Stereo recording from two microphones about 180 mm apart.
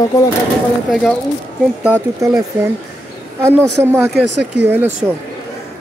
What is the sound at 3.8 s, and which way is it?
Speech, 15° right (ahead or behind).